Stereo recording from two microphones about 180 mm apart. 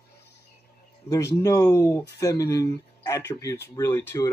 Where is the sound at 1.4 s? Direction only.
20° left (ahead or behind).